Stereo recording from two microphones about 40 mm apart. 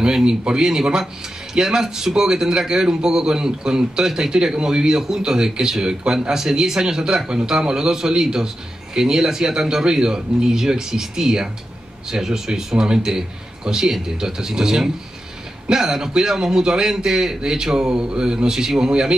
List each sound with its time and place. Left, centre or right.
0.0 s a man's voice: centre